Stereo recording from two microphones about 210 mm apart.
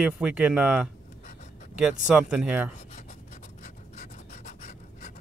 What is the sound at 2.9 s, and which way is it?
Rub, 35° left (ahead or behind).